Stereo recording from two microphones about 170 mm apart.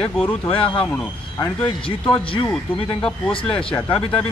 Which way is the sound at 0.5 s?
30° left (ahead or behind).